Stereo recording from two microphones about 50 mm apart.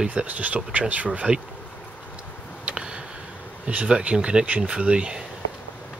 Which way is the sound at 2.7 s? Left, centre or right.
Centre.